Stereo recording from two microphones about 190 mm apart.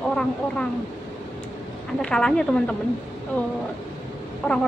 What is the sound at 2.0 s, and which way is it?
Speech, 5° left (ahead or behind).